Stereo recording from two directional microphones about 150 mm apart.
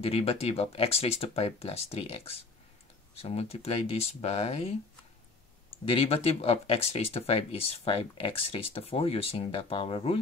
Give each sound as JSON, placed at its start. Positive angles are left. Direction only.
{"t": 0.0, "sound": "speech", "side_deg": 40}
{"t": 5.9, "sound": "speech", "side_deg": 40}